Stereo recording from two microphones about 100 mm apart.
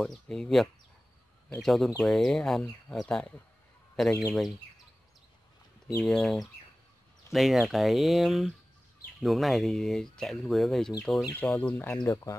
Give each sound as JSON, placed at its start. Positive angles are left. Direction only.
{"t": 0.0, "sound": "speech", "side_deg": 5}
{"t": 6.0, "sound": "speech", "side_deg": 0}
{"t": 11.5, "sound": "speech", "side_deg": 20}
{"t": 12.0, "sound": "speech", "side_deg": 35}